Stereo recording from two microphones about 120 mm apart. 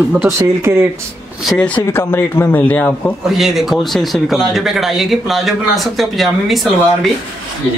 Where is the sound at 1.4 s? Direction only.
Centre (ahead or behind).